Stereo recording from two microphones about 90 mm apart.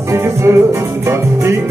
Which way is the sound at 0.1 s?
30° right (ahead or behind).